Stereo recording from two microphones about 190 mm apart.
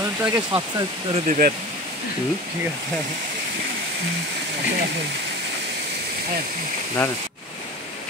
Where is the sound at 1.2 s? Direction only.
40° right (ahead or behind).